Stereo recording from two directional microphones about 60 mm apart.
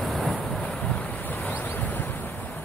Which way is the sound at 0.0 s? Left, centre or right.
Centre.